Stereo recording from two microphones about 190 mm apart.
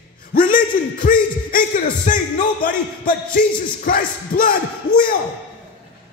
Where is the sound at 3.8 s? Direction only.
50° left (ahead or behind).